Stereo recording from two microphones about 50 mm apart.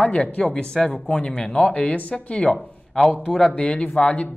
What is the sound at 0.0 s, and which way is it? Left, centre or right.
Speech, left.